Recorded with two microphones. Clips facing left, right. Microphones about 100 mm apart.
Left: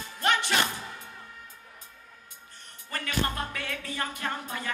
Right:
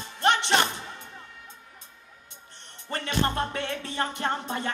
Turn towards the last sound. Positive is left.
turn(degrees=-25)  # may be behind; listen again after turning